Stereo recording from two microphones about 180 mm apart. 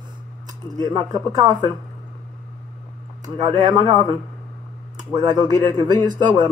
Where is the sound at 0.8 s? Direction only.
25° right (ahead or behind).